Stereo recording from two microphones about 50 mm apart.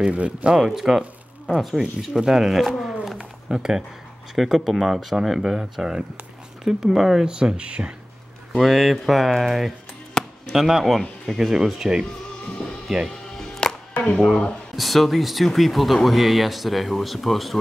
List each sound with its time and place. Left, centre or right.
0.1 s speech: right
0.6 s speech: centre
3.2 s a sound: centre
4.4 s speech: centre
7.2 s speech: centre
8.5 s speech: centre
10.2 s chop: centre
10.5 s speech: centre
13.4 s music: centre
14.8 s speech: centre